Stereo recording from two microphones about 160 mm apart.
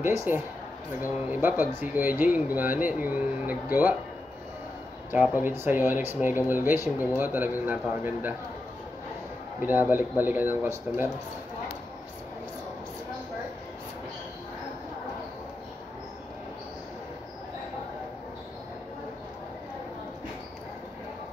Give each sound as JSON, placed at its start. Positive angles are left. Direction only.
{"t": 0.0, "sound": "speech", "side_deg": -15}
{"t": 5.1, "sound": "speech", "side_deg": -10}
{"t": 9.6, "sound": "speech", "side_deg": -10}